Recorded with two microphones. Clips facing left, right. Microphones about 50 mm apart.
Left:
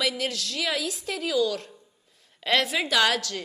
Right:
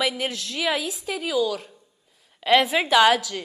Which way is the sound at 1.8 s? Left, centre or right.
Centre.